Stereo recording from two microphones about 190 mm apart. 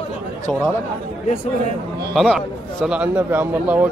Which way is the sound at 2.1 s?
Centre (ahead or behind).